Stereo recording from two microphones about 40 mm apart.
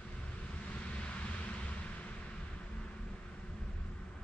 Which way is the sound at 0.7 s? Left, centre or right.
Left.